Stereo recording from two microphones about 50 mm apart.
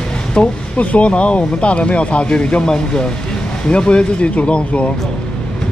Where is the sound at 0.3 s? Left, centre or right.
Left.